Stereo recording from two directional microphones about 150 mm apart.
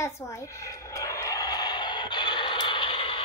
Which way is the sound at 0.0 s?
20° left (ahead or behind).